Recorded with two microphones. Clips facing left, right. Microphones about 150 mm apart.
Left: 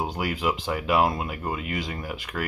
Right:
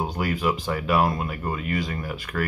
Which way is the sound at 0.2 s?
15° left (ahead or behind).